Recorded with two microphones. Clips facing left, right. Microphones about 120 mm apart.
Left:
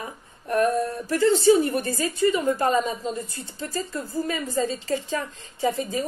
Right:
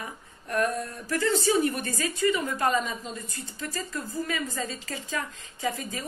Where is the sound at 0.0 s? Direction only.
30° left (ahead or behind).